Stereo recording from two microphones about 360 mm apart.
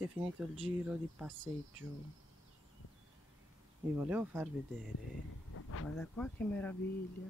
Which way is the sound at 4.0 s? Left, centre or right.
Centre.